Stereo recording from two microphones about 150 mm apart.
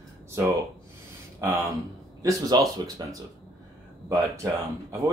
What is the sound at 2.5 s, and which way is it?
Speech, 30° right (ahead or behind).